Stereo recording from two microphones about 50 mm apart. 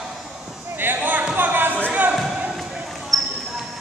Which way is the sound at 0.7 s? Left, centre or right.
Right.